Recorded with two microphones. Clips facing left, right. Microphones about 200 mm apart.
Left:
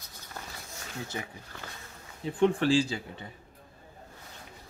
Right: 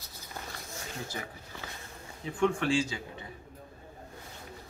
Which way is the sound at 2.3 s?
35° left (ahead or behind).